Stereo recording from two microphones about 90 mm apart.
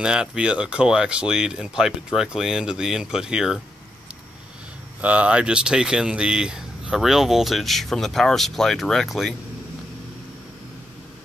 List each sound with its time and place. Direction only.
0.0 s speech: 10° right (ahead or behind)
5.0 s speech: 15° right (ahead or behind); by 9.3 s centre (ahead or behind)